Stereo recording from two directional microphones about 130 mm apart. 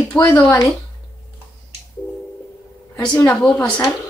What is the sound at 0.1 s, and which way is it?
Speech, 10° left (ahead or behind).